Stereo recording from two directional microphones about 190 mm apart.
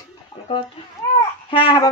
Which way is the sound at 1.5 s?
25° left (ahead or behind).